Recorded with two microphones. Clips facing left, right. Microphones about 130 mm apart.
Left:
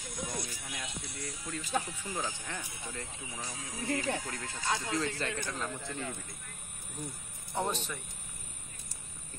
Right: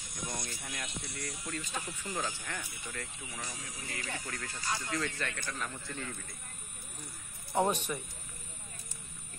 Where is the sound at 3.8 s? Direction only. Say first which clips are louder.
Left 10 dB; 50° left (ahead or behind).